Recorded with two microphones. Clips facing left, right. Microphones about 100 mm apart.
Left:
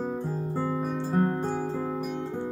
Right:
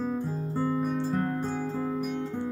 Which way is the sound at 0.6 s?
35° left (ahead or behind).